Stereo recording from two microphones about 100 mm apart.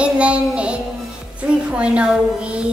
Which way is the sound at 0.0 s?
10° right (ahead or behind).